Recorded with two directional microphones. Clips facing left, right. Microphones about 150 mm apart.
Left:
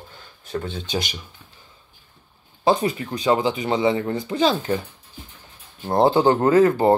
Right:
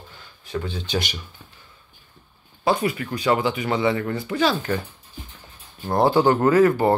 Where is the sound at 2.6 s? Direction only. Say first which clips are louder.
Left 2 dB; 25° left (ahead or behind).